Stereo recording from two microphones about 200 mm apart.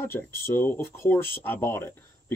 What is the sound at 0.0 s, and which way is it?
Speech, 10° left (ahead or behind).